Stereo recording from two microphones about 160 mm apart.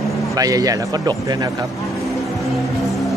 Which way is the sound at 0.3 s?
20° right (ahead or behind).